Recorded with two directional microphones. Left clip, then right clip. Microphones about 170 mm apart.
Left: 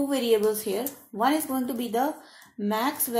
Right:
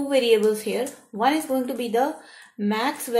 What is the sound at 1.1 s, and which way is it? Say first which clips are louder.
Speech: right 3 dB; 40° left (ahead or behind).